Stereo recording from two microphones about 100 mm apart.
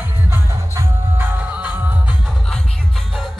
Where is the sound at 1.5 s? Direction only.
15° right (ahead or behind).